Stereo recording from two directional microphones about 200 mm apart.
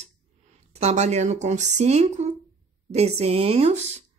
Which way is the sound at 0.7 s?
35° right (ahead or behind).